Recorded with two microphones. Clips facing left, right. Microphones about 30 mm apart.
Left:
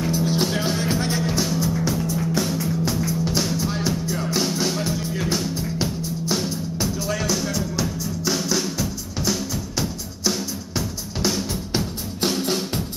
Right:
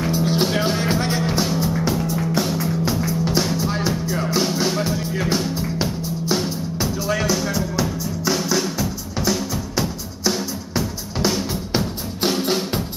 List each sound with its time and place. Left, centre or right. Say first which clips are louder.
0.0 s music: right 2 dB; centre